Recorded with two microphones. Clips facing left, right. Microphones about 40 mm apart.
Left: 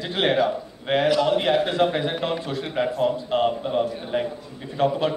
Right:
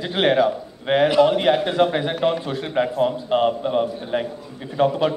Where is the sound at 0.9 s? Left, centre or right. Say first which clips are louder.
Right 4 dB; right.